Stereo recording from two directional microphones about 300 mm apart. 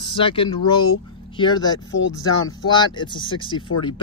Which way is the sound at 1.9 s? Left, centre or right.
Left.